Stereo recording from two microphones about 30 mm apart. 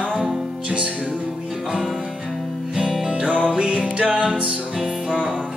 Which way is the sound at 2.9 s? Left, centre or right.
Centre.